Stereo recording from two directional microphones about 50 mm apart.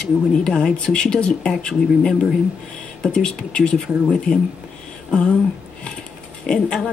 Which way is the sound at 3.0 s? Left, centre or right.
Centre.